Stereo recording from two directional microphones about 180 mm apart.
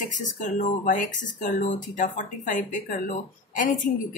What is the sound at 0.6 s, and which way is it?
A woman's voice, 45° left (ahead or behind).